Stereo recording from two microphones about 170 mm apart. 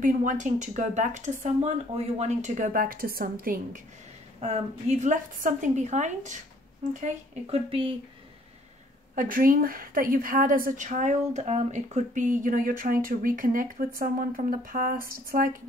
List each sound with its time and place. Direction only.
0.0 s speech: 50° right (ahead or behind)
4.4 s a woman's voice: 40° right (ahead or behind)
9.1 s a woman's voice: 55° right (ahead or behind)